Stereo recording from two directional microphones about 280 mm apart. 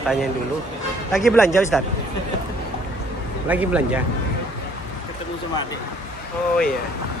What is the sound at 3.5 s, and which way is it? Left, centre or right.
Speech, centre.